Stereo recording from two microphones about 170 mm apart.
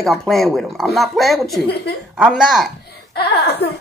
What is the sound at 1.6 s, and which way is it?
Speech, 80° left.